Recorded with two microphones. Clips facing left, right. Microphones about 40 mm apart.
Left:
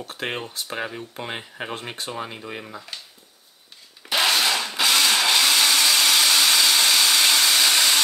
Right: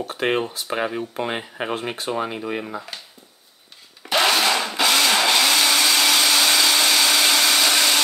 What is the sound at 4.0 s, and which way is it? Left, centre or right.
Blender, centre.